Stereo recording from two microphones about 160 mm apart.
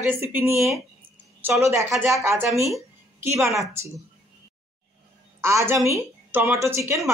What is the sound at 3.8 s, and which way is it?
Speech, 15° right (ahead or behind).